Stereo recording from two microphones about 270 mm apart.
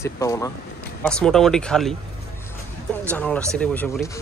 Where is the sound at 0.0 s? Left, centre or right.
Centre.